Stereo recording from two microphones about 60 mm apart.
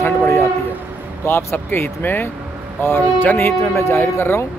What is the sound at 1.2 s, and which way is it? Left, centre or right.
Speech, left.